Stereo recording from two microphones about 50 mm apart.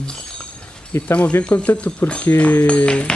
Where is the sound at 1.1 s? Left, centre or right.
Left.